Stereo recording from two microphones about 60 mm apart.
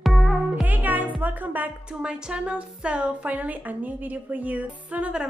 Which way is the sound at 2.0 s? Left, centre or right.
Centre.